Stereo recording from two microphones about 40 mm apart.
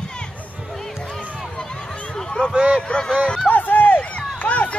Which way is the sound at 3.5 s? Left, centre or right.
Left.